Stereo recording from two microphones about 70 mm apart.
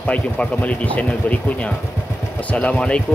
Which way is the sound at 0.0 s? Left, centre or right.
Centre.